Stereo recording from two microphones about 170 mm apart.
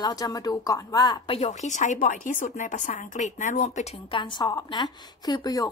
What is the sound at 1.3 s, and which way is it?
Speech, 40° left (ahead or behind).